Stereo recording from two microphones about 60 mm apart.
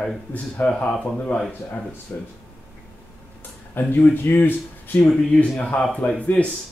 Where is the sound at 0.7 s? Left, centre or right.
Centre.